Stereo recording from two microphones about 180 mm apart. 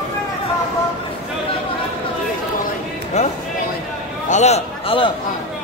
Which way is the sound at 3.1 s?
40° left (ahead or behind).